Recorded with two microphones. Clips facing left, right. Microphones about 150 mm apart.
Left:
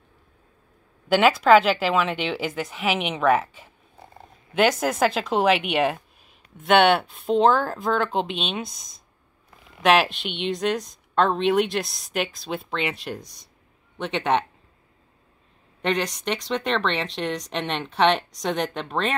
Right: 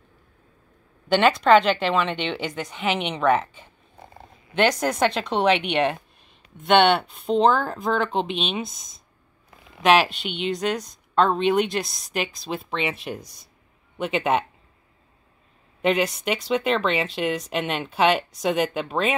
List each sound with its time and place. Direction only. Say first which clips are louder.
1.0 s a woman's voice: even; 5° left (ahead or behind)
15.8 s a woman's voice: right 3 dB; 5° right (ahead or behind)